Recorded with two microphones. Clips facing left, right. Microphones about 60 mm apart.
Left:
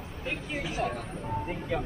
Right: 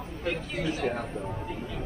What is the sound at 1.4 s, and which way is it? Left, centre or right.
Speech, left.